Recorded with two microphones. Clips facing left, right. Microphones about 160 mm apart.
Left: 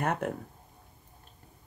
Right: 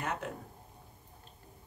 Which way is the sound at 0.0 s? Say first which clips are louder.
Left 7 dB; 55° left (ahead or behind).